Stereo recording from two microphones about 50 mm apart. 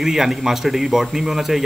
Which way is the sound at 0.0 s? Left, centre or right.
Centre.